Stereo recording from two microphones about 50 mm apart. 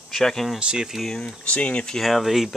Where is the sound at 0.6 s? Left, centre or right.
Centre.